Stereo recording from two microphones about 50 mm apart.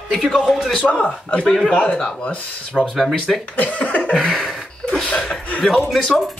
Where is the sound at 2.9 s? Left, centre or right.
Centre.